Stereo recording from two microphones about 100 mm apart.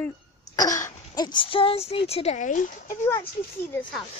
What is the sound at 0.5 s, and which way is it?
Speech, 35° left (ahead or behind).